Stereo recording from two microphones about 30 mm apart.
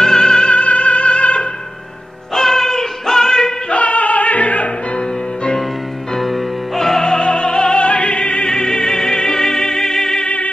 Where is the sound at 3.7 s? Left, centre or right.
Left.